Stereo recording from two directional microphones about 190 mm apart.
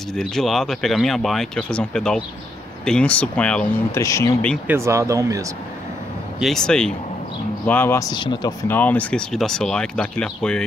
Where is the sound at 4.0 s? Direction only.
15° left (ahead or behind).